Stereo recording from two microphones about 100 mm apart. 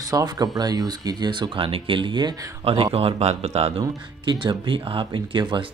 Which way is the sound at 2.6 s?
75° right (ahead or behind).